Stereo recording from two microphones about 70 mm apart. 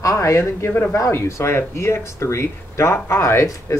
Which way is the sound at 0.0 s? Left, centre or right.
Left.